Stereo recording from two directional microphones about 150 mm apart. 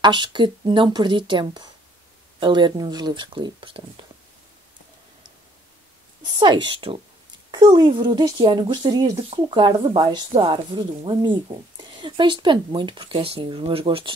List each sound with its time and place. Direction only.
0.0 s speech: 30° right (ahead or behind)
6.3 s speech: 30° right (ahead or behind)